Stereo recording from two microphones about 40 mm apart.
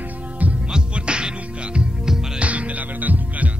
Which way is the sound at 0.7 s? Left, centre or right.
Right.